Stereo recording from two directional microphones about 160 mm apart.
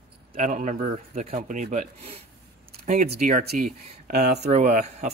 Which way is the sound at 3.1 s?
60° right (ahead or behind).